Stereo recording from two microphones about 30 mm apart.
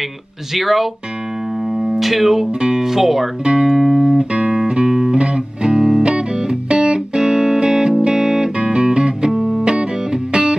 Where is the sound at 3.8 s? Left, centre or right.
Centre.